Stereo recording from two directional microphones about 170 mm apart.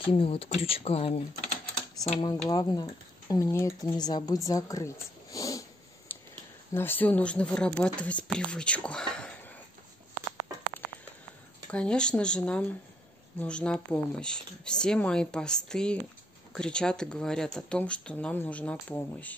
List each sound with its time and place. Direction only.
0.0 s speech: 30° left (ahead or behind)
2.5 s speech: 20° left (ahead or behind); by 9.5 s 5° left (ahead or behind)
11.7 s speech: 5° left (ahead or behind)